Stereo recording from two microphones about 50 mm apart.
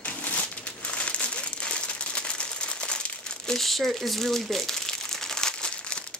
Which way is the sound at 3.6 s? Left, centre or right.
Centre.